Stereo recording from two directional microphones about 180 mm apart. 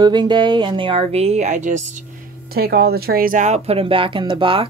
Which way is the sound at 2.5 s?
60° right (ahead or behind).